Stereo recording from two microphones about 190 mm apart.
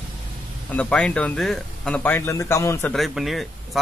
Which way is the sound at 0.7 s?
5° left (ahead or behind).